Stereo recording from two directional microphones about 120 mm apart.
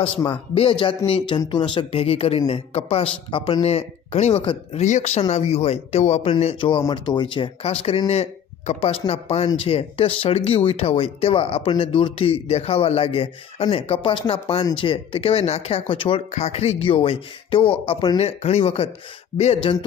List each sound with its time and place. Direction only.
0.3 s speech: 45° left (ahead or behind)
3.6 s speech: 60° left (ahead or behind)
4.7 s speech: 80° left
5.3 s speech: 60° left (ahead or behind)
6.9 s speech: 40° left (ahead or behind)
16.3 s speech: 65° left (ahead or behind)